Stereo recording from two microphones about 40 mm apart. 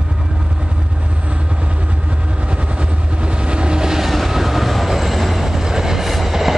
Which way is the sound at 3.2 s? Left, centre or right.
Right.